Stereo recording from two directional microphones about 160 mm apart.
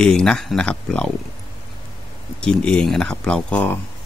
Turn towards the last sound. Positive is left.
turn(degrees=10)  # may be behind; listen again after turning